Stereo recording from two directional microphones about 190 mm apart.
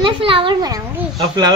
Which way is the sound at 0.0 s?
25° right (ahead or behind).